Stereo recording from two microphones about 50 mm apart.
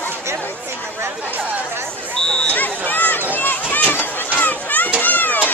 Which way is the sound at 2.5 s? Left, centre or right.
Left.